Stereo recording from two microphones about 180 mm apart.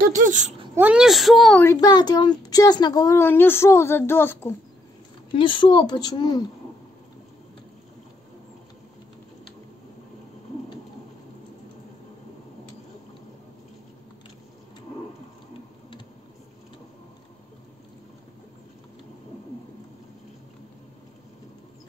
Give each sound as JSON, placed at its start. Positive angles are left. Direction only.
{"t": 0.0, "sound": "speech", "side_deg": -45}
{"t": 0.7, "sound": "speech", "side_deg": -5}
{"t": 1.6, "sound": "a woman's voice", "side_deg": 20}
{"t": 5.3, "sound": "speech", "side_deg": 30}